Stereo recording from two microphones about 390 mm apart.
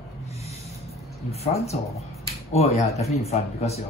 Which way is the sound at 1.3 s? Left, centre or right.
Centre.